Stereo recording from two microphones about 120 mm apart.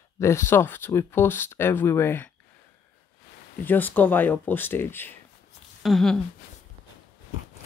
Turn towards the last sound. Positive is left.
turn(degrees=5)  # may be behind; listen again after turning